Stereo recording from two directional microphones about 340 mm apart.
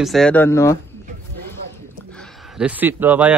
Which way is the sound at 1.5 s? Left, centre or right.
Centre.